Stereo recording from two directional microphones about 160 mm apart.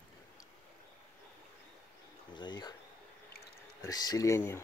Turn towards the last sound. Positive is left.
turn(degrees=15)  # may be behind; listen again after turning